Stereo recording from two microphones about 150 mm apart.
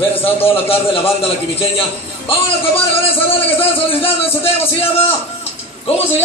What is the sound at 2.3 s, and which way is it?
A man's voice, 40° left (ahead or behind).